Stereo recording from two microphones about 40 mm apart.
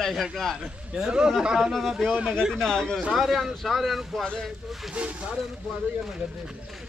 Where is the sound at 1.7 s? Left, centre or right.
Centre.